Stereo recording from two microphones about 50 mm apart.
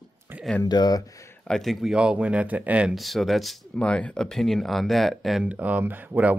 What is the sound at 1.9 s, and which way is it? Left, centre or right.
Speech, right.